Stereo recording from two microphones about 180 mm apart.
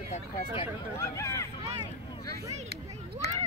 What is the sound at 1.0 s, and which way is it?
Speech, 15° left (ahead or behind).